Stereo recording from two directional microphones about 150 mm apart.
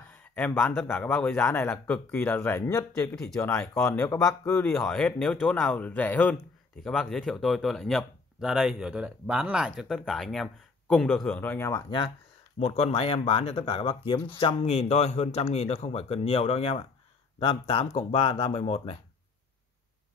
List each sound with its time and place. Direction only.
0.1 s a sound: 10° left (ahead or behind)
0.6 s speech: 10° left (ahead or behind)
12.5 s speech: 45° left (ahead or behind)
14.4 s speech: 45° left (ahead or behind)